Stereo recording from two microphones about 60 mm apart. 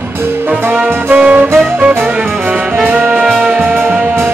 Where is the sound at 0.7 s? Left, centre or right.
Right.